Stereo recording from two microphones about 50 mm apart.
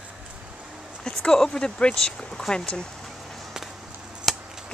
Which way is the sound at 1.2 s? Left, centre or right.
Centre.